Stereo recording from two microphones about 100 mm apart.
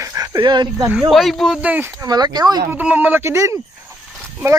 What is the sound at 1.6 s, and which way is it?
Speech, 15° right (ahead or behind).